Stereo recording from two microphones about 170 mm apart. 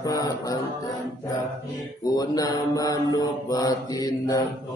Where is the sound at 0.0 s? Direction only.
20° left (ahead or behind).